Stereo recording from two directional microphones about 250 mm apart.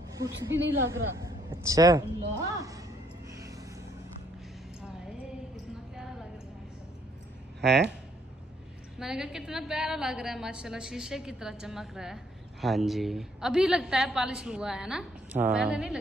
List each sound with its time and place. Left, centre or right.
0.5 s a woman's voice: right
1.2 s a woman's voice: centre
8.9 s a woman's voice: centre